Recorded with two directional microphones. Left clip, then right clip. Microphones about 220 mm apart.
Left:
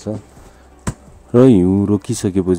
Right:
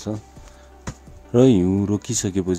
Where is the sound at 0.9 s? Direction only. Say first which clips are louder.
Left 8 dB; 55° left (ahead or behind).